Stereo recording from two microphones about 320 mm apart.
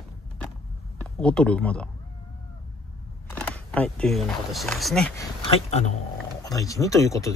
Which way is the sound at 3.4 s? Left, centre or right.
Centre.